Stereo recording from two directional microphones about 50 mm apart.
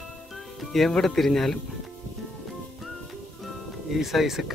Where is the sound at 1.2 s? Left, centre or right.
Centre.